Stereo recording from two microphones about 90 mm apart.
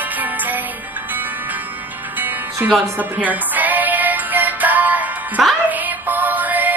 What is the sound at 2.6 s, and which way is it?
Music, 15° right (ahead or behind).